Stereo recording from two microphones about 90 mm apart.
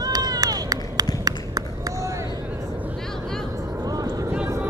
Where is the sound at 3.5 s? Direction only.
40° right (ahead or behind).